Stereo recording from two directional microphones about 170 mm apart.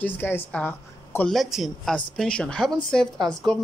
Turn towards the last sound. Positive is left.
turn(degrees=5)  # may be behind; listen again after turning